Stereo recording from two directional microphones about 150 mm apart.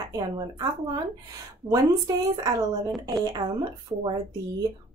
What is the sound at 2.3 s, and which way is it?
Speech, 25° right (ahead or behind).